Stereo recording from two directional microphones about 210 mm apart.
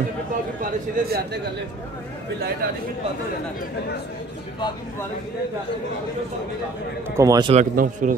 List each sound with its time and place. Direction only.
0.6 s speech: 45° right (ahead or behind)
7.2 s a man's voice: 20° right (ahead or behind)
7.5 s a man's voice: 40° right (ahead or behind)